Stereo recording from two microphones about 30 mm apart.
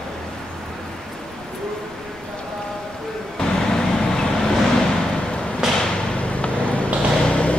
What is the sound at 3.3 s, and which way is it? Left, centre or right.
Vehicle, centre.